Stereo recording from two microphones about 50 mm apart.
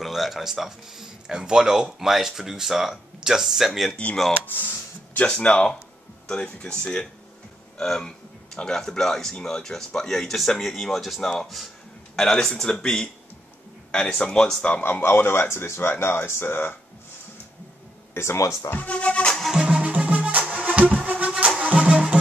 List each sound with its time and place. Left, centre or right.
0.0 s speech: centre
3.9 s speech: centre
4.5 s speech: left
5.4 s a man's voice: centre
14.8 s speech: left
18.1 s speech: left
18.8 s speech: left
19.5 s music: centre
20.1 s music: right